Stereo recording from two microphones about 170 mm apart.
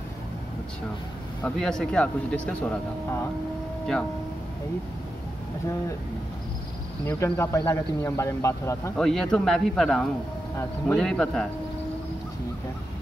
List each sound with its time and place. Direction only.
1.4 s speech: 5° left (ahead or behind)
7.1 s speech: 15° left (ahead or behind)
8.9 s speech: 5° left (ahead or behind)